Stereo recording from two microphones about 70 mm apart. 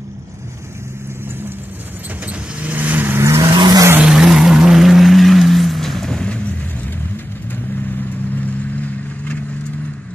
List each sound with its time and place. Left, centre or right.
2.2 s vehicle: right
3.2 s vehicle: right
3.5 s vehicle: right
4.0 s vehicle: centre
8.4 s vehicle: left